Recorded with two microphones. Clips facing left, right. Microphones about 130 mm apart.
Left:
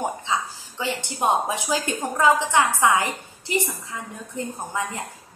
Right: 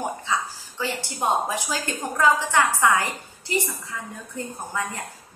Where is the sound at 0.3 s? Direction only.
20° left (ahead or behind).